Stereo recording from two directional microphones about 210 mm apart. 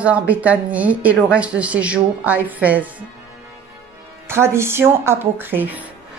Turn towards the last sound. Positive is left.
turn(degrees=-10)  # may be behind; listen again after turning